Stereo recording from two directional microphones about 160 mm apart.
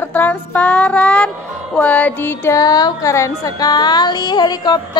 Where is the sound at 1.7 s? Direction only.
10° left (ahead or behind).